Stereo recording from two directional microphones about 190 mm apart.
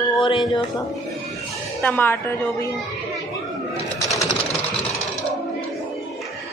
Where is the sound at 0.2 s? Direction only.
25° left (ahead or behind).